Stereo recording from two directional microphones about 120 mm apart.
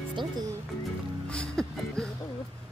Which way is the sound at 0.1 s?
40° right (ahead or behind).